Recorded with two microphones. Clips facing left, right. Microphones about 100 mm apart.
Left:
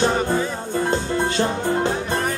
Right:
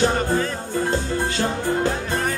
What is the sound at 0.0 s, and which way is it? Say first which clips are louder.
Music: even; 20° left (ahead or behind).